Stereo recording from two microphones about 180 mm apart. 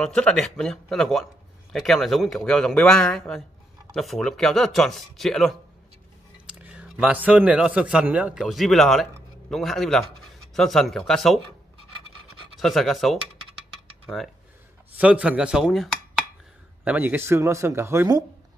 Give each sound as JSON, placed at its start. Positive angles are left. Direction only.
{"t": 0.0, "sound": "speech", "side_deg": 5}
{"t": 12.5, "sound": "speech", "side_deg": 0}